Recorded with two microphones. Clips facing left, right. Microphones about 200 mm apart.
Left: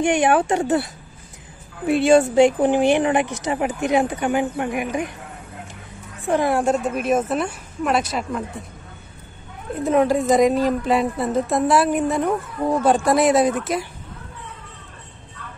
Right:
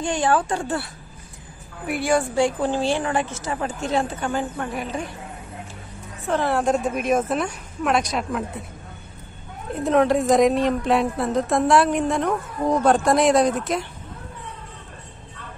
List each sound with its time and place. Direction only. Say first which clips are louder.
0.0 s speech: left 4 dB; 20° left (ahead or behind)
1.9 s speech: left 7 dB; 25° left (ahead or behind)
6.2 s speech: left 3 dB; 15° left (ahead or behind)
6.7 s speech: left 1 dB; centre (ahead or behind)
9.8 s speech: even; centre (ahead or behind)